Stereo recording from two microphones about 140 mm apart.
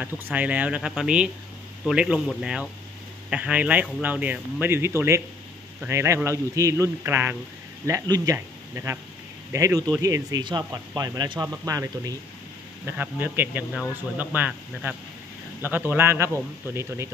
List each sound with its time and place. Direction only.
0.0 s a man's voice: 10° right (ahead or behind)
12.8 s a man's voice: 10° right (ahead or behind)